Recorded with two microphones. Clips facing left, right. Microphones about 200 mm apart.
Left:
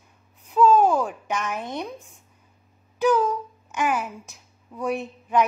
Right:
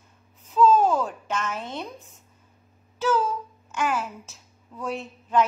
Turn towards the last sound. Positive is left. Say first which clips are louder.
# left 1 dB
turn(degrees=15)  # may be behind; listen again after turning